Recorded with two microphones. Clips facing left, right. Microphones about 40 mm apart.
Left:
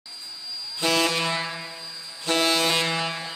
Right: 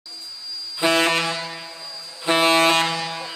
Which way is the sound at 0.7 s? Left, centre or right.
Right.